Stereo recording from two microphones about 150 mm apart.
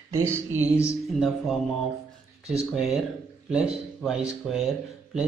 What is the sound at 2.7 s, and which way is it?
Speech, centre (ahead or behind).